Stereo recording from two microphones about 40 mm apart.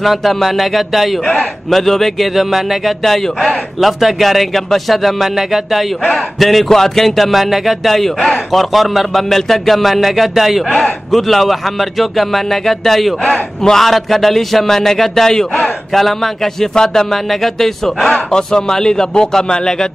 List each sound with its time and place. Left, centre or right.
0.0 s a man's voice: centre
2.3 s a man's voice: centre
6.4 s a man's voice: centre
18.1 s speech: centre